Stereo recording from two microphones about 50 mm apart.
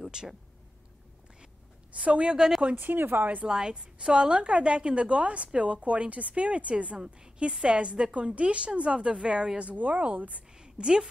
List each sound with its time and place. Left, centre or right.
0.0 s a sound: centre
1.9 s a woman's voice: right
2.3 s speech: centre
2.7 s speech: right
3.4 s a woman's voice: centre
9.6 s a woman's voice: right
10.6 s a sound: centre